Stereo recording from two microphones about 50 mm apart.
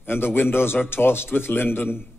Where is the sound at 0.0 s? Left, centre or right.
Left.